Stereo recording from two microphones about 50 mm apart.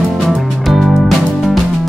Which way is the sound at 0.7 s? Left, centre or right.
Centre.